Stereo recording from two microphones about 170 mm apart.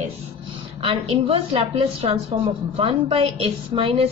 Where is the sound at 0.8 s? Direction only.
30° right (ahead or behind).